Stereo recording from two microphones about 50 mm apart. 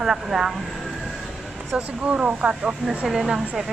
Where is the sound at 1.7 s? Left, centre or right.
Centre.